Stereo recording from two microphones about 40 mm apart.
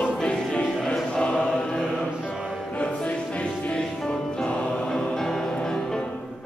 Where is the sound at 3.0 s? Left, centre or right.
Left.